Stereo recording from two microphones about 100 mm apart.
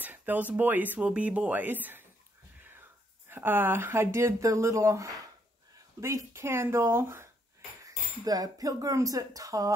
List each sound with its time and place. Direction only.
0.0 s speech: 15° right (ahead or behind)
3.3 s speech: 20° right (ahead or behind)
7.8 s speech: 35° right (ahead or behind)